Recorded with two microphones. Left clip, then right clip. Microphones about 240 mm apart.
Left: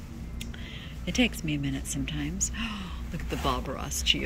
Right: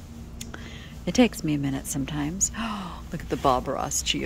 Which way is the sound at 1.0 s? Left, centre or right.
Centre.